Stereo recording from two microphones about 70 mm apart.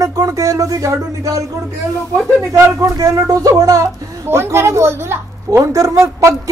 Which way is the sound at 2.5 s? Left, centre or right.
Right.